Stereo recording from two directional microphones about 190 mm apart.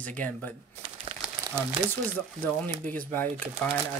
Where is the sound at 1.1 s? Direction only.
30° right (ahead or behind).